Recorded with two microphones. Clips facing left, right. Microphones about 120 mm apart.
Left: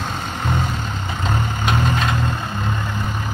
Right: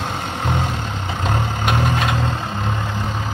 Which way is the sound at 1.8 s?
15° right (ahead or behind).